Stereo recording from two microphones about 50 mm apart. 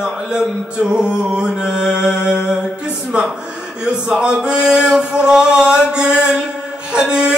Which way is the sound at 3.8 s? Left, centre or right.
Centre.